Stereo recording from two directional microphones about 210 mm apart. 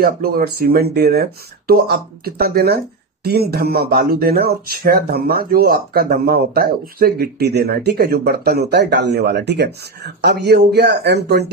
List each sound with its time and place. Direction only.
0.0 s speech: 45° right (ahead or behind)